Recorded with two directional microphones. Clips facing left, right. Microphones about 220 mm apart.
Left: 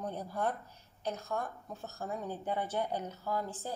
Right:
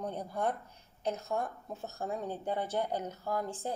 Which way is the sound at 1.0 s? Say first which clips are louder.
Right 3 dB; 25° right (ahead or behind).